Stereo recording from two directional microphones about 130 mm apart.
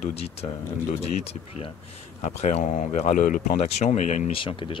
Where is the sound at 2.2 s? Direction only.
60° left (ahead or behind); by 3.6 s 90° left.